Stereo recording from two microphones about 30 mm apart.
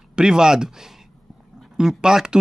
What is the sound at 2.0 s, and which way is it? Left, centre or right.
Speech, right.